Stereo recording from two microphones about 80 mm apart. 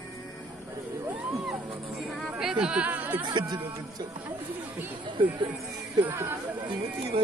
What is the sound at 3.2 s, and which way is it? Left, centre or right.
Music, right.